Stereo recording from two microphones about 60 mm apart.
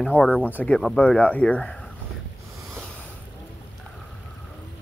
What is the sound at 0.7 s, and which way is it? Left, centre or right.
Speech, centre.